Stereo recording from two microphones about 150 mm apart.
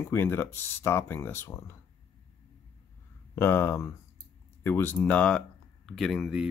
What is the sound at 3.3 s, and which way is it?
Speech, 15° left (ahead or behind).